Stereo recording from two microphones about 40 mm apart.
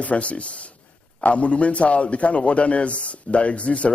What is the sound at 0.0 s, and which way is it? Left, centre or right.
A man's voice, left.